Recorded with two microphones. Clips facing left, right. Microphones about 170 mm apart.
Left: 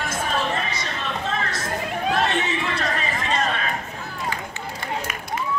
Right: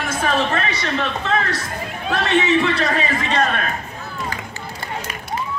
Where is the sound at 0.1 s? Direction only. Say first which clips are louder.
Right 6 dB; 70° right (ahead or behind).